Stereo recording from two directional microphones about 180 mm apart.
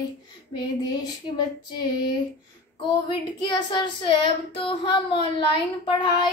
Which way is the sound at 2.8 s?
25° left (ahead or behind).